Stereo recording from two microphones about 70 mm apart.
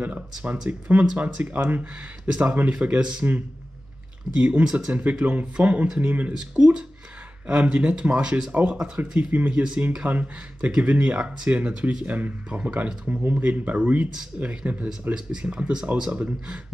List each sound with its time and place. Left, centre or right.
0.0 s speech: right
4.4 s speech: centre
6.3 s speech: centre